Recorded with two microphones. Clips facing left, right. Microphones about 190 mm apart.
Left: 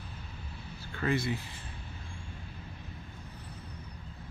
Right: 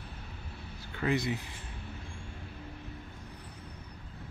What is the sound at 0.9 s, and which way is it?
Speech, 15° right (ahead or behind).